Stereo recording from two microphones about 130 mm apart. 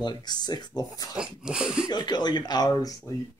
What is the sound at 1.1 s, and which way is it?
Dog, 5° right (ahead or behind).